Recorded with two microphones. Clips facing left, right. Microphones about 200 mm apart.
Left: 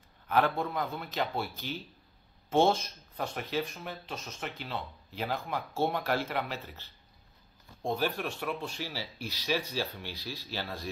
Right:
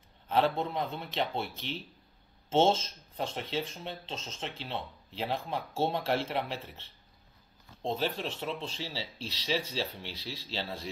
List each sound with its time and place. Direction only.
0.3 s speech: 25° right (ahead or behind)